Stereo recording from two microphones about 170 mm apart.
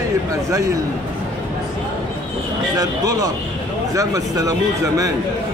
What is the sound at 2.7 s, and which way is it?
Speech, 20° right (ahead or behind).